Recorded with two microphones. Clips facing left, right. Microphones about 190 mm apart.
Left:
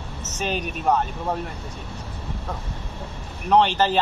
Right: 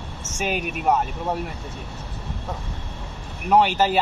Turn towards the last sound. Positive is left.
turn(degrees=-10)  # may be behind; listen again after turning